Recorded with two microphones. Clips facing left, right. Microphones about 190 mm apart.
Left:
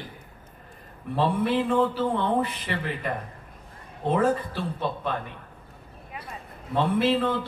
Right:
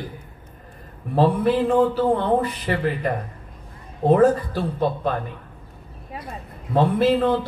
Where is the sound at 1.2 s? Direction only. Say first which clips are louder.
Right 5 dB; 40° right (ahead or behind).